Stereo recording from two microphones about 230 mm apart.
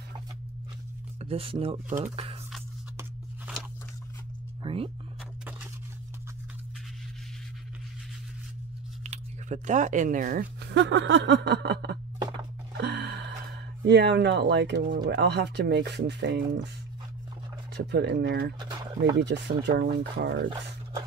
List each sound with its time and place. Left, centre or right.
1.2 s speech: right
4.6 s music: right
9.0 s speech: right
12.7 s a sound: right
13.8 s speech: right
17.7 s speech: right